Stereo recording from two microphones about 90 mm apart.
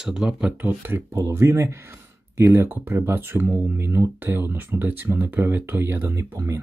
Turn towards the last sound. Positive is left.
turn(degrees=-30)  # may be behind; listen again after turning